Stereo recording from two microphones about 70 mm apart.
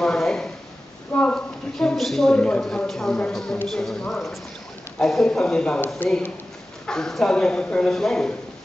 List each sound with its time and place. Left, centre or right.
0.0 s a sound: centre
1.8 s speech: centre
6.9 s speech: centre